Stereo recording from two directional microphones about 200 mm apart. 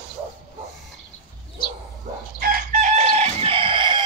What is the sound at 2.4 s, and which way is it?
Chicken, 45° right (ahead or behind).